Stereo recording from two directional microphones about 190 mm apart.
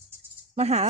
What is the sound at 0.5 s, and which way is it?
Speech, 35° right (ahead or behind).